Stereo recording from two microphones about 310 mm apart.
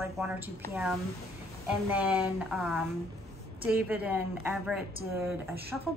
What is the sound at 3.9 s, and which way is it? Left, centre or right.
A woman's voice, centre.